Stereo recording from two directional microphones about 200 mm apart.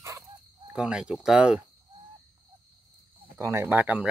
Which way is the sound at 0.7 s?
5° right (ahead or behind).